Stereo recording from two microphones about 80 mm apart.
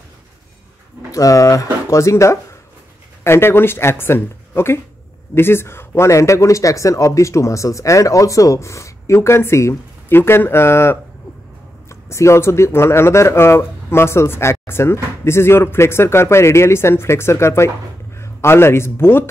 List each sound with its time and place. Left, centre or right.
1.1 s a man's voice: left